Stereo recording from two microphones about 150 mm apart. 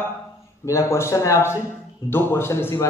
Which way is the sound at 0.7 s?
20° left (ahead or behind).